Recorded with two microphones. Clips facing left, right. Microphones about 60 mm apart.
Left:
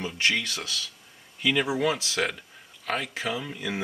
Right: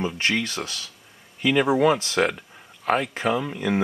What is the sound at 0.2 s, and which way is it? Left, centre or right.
Speech, right.